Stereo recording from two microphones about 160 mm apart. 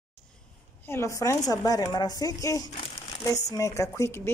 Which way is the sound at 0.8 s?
15° left (ahead or behind).